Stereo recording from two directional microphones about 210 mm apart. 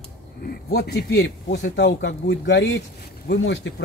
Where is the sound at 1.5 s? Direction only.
50° left (ahead or behind).